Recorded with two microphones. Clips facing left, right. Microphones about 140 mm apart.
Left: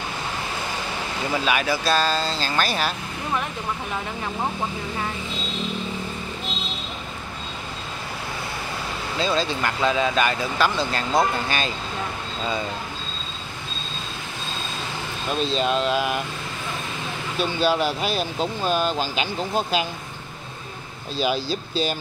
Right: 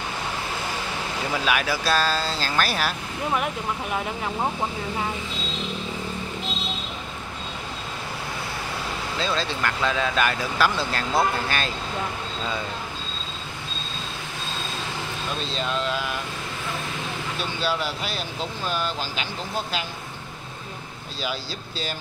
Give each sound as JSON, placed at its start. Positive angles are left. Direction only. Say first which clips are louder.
{"t": 1.4, "sound": "speech", "louder": "left 1 dB", "side_deg": 0}
{"t": 9.2, "sound": "speech", "louder": "left 3 dB", "side_deg": 5}
{"t": 15.6, "sound": "speech", "louder": "left 4 dB", "side_deg": 20}
{"t": 17.4, "sound": "speech", "louder": "left 7 dB", "side_deg": 15}
{"t": 21.2, "sound": "speech", "louder": "left 8 dB", "side_deg": 15}